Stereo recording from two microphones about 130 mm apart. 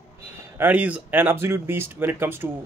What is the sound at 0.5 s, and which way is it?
Speech, 15° right (ahead or behind).